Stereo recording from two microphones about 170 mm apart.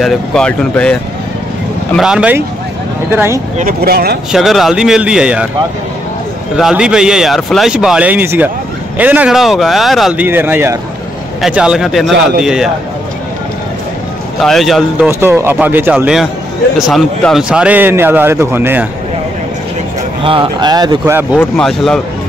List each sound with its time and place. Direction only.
0.0 s a man's voice: 5° left (ahead or behind)
2.0 s a man's voice: 5° right (ahead or behind)
3.5 s speech: 60° right (ahead or behind)
4.3 s a man's voice: centre (ahead or behind)
6.5 s a man's voice: 5° right (ahead or behind)
10.2 s a man's voice: 10° right (ahead or behind)
14.4 s a man's voice: centre (ahead or behind)
15.0 s a man's voice: 15° right (ahead or behind)
20.2 s speech: 25° right (ahead or behind)
21.4 s a man's voice: 5° left (ahead or behind)